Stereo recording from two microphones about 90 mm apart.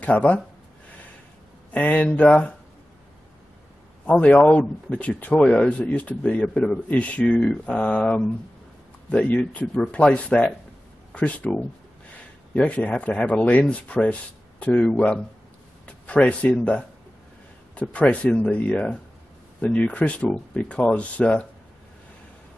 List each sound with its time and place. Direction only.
0.0 s a man's voice: 15° left (ahead or behind)
1.7 s a man's voice: 15° left (ahead or behind)
4.0 s a man's voice: 15° left (ahead or behind)
15.8 s a sound: 15° left (ahead or behind)
17.7 s a man's voice: 15° left (ahead or behind)